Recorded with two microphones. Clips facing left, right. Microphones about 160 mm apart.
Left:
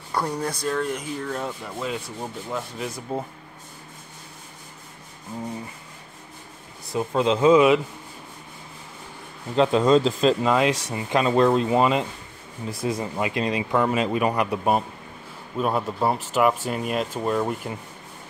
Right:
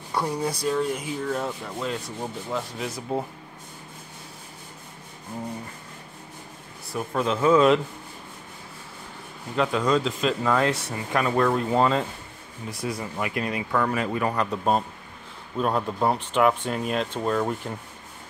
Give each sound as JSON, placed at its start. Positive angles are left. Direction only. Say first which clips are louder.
{"t": 0.1, "sound": "speech", "louder": "even", "side_deg": -10}
{"t": 0.7, "sound": "rub", "louder": "right 1 dB", "side_deg": -5}
{"t": 6.9, "sound": "speech", "louder": "left 4 dB", "side_deg": 20}
{"t": 9.6, "sound": "speech", "louder": "left 5 dB", "side_deg": 25}
{"t": 10.4, "sound": "speech", "louder": "left 2 dB", "side_deg": 15}
{"t": 15.5, "sound": "rub", "louder": "left 1 dB", "side_deg": 5}